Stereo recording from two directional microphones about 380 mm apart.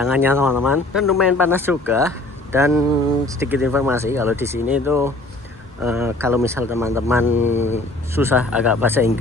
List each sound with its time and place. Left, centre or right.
0.0 s speech: centre
7.4 s speech: centre
8.1 s speech: centre